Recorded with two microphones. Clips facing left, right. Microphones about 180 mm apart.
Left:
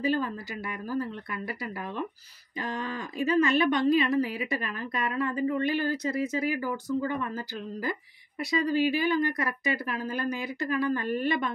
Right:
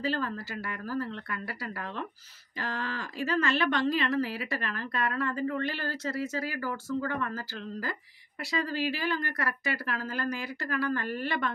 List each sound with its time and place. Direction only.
0.0 s speech: 15° left (ahead or behind)